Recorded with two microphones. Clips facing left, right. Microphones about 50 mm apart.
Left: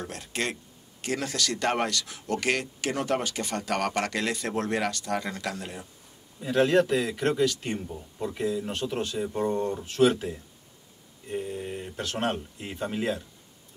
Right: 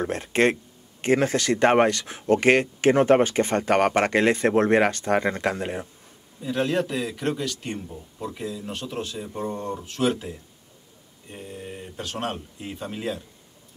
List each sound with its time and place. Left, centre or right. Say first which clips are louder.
0.0 s speech: right 10 dB; right
6.5 s speech: left 3 dB; centre